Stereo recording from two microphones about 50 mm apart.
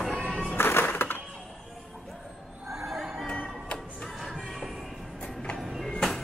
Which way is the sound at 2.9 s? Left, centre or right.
Centre.